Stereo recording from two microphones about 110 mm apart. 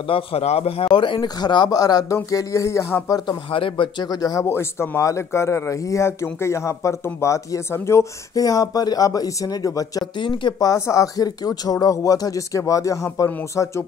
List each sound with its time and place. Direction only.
0.0 s speech: 60° left (ahead or behind); by 3.2 s 25° left (ahead or behind)
3.3 s speech: 55° left (ahead or behind); by 4.5 s 35° left (ahead or behind)
4.5 s speech: 20° left (ahead or behind); by 10.7 s 45° left (ahead or behind)
10.7 s speech: 30° left (ahead or behind)